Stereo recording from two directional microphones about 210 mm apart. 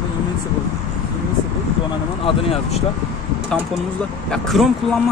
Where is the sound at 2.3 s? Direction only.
25° left (ahead or behind).